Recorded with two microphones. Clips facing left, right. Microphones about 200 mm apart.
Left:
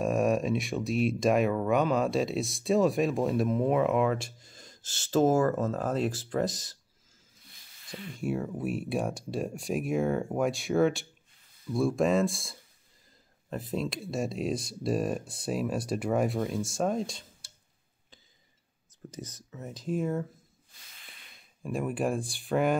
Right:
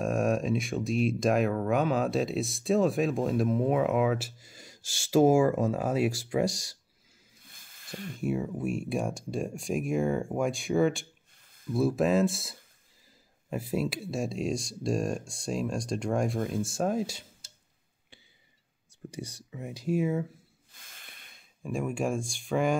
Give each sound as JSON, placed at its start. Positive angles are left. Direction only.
{"t": 0.0, "sound": "speech", "side_deg": 0}
{"t": 7.5, "sound": "a sound", "side_deg": -50}
{"t": 8.2, "sound": "speech", "side_deg": 0}
{"t": 19.0, "sound": "speech", "side_deg": -10}
{"t": 20.8, "sound": "snort", "side_deg": -50}
{"t": 21.6, "sound": "speech", "side_deg": 0}